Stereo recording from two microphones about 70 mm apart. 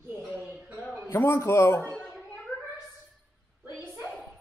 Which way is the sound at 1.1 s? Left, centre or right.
Left.